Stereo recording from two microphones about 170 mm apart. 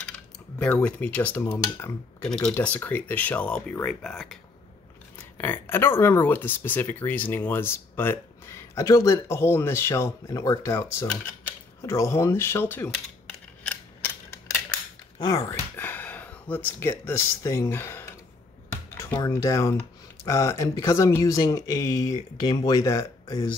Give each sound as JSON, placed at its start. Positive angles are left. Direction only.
{"t": 0.6, "sound": "speech", "side_deg": 5}
{"t": 5.4, "sound": "speech", "side_deg": 15}
{"t": 13.7, "sound": "scissors", "side_deg": 15}
{"t": 15.1, "sound": "speech", "side_deg": 20}
{"t": 15.7, "sound": "speech", "side_deg": 10}
{"t": 18.7, "sound": "a sound", "side_deg": 15}
{"t": 19.1, "sound": "speech", "side_deg": 20}